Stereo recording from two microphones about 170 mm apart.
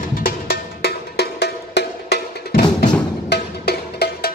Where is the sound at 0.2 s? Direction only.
65° left (ahead or behind).